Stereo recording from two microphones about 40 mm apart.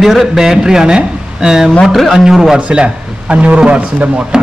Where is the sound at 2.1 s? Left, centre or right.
Centre.